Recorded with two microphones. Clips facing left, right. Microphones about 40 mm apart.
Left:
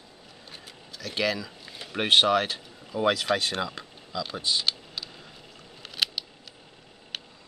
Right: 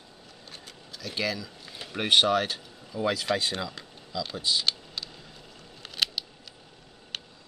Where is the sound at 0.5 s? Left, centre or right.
Centre.